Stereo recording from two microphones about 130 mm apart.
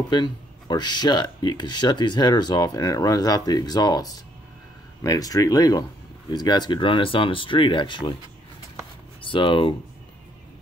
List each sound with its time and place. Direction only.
0.1 s speech: 35° left (ahead or behind)
9.2 s speech: 40° left (ahead or behind)